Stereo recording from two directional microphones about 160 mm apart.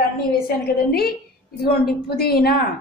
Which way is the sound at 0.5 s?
70° left (ahead or behind).